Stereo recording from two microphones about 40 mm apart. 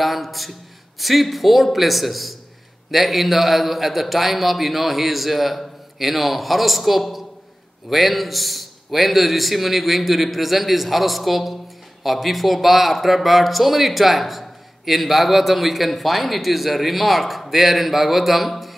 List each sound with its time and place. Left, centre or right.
0.0 s speech: centre